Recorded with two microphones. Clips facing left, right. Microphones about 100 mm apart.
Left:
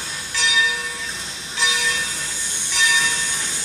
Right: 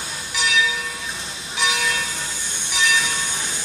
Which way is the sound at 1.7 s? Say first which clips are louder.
Right 2 dB; 45° right (ahead or behind).